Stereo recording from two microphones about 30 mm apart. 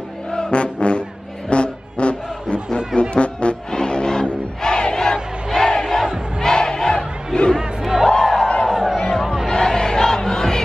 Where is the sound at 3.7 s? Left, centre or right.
Left.